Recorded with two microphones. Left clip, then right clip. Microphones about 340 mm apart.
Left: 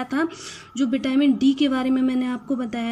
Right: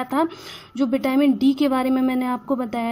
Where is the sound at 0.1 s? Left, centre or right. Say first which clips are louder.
Right 3 dB; centre.